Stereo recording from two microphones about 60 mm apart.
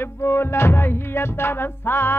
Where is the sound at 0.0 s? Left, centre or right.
Left.